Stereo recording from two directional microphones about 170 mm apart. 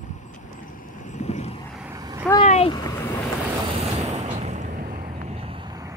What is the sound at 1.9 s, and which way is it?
Vehicle, 20° right (ahead or behind).